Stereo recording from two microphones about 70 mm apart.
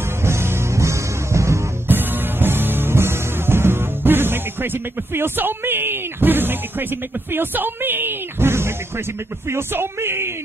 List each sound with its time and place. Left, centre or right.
0.2 s music: right
1.9 s music: right
9.5 s speech: right